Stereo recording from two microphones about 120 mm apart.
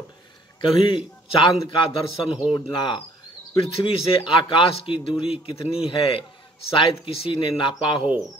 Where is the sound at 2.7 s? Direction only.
40° left (ahead or behind).